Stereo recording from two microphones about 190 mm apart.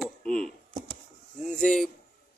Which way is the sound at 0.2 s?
5° left (ahead or behind).